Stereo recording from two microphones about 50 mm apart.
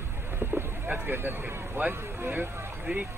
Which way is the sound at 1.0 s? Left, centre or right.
Right.